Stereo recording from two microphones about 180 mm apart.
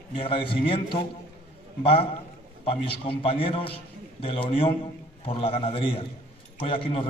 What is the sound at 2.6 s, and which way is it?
A man's voice, 30° left (ahead or behind).